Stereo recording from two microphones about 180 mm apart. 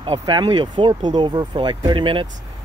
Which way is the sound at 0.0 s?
25° right (ahead or behind).